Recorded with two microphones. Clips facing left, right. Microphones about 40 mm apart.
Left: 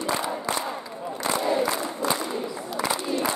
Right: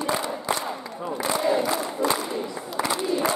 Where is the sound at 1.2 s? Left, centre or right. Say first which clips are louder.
Right 1 dB; centre.